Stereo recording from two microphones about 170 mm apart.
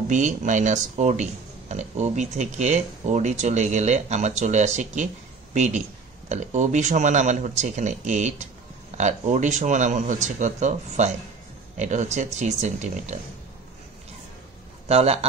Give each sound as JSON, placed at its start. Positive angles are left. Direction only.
{"t": 0.1, "sound": "speech", "side_deg": -45}
{"t": 14.9, "sound": "a man's voice", "side_deg": -35}